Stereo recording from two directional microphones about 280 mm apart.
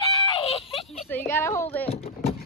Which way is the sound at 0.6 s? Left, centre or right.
Centre.